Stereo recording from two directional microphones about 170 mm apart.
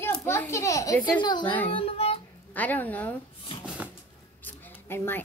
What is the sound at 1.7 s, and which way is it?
Music, 30° left (ahead or behind).